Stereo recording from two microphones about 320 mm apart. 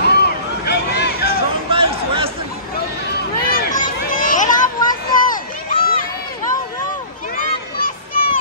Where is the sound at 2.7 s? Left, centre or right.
Left.